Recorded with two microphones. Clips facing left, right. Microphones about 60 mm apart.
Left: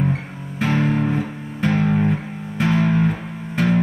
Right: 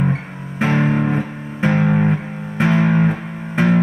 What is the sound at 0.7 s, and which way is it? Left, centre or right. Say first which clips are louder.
Music: right 2 dB; right.